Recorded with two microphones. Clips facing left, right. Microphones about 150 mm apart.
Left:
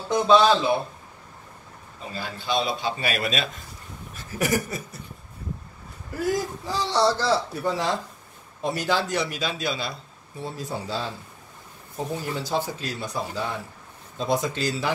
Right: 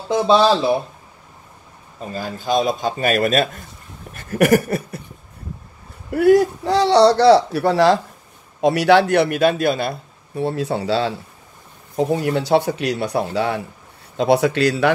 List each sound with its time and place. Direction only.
0.3 s speech: 35° right (ahead or behind)
2.1 s speech: 45° right (ahead or behind)
4.1 s a sound: 60° right (ahead or behind)
6.0 s a man's voice: 65° right (ahead or behind)